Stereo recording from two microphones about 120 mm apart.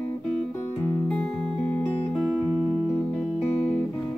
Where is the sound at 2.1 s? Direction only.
5° right (ahead or behind).